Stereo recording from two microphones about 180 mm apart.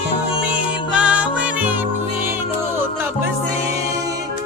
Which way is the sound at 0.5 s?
5° right (ahead or behind).